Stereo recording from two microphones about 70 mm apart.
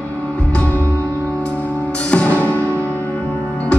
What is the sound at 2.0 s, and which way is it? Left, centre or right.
Music, centre.